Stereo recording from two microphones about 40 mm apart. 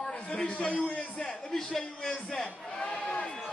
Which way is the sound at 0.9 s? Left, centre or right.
Left.